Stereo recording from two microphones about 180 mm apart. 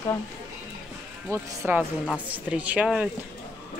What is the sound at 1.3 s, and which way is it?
A woman's voice, 15° right (ahead or behind).